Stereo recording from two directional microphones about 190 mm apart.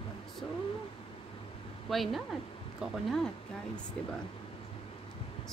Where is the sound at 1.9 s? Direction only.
Centre (ahead or behind).